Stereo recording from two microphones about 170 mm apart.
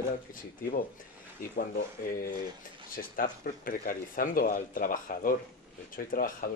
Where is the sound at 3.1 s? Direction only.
50° left (ahead or behind).